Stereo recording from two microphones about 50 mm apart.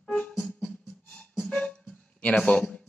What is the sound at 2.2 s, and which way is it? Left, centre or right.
Speech, left.